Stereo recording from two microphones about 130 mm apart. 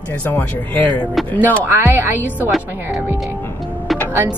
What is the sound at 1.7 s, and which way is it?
Speech, 20° right (ahead or behind).